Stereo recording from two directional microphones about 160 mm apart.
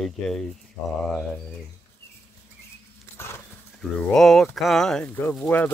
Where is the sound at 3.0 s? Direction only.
15° left (ahead or behind).